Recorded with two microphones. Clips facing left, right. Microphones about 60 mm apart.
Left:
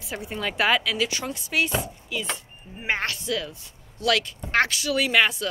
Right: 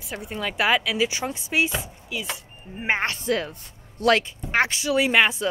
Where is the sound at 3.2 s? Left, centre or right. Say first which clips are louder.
Right 4 dB; right.